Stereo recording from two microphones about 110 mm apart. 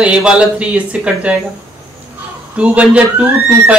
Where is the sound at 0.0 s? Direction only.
10° right (ahead or behind).